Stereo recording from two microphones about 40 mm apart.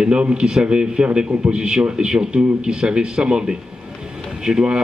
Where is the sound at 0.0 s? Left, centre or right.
Right.